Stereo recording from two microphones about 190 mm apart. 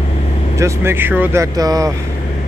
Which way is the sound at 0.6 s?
10° right (ahead or behind).